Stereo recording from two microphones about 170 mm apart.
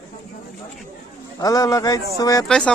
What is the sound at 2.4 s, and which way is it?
Speech, 5° left (ahead or behind).